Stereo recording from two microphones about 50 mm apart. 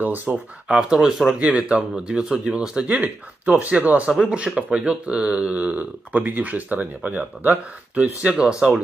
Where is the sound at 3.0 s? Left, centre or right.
Right.